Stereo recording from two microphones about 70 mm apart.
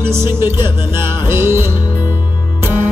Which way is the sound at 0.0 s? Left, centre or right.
Right.